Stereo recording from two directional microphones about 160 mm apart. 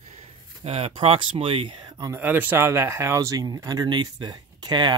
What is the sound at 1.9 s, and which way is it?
Speech, 15° right (ahead or behind).